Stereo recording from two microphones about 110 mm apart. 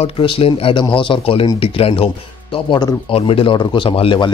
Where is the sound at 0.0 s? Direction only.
55° left (ahead or behind).